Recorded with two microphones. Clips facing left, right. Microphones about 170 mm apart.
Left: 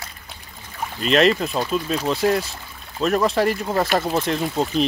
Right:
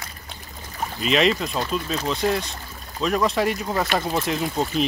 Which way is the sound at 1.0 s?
Centre (ahead or behind).